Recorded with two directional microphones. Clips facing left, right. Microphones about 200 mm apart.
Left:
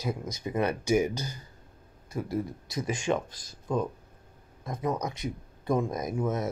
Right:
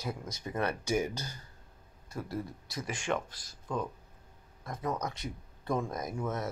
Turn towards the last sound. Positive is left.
turn(degrees=15)  # may be behind; listen again after turning